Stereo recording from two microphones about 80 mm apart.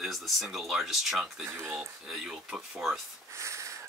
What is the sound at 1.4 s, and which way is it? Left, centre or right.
Speech, right.